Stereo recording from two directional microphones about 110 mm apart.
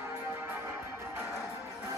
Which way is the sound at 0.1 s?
25° right (ahead or behind).